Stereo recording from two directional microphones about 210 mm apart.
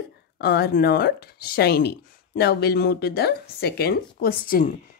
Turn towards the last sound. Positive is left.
turn(degrees=45)  # may be behind; listen again after turning